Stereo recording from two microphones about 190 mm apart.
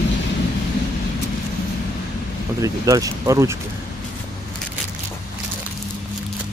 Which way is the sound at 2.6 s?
20° right (ahead or behind).